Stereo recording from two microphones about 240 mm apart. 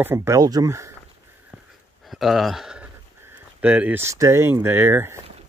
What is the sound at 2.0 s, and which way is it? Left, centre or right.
Speech, centre.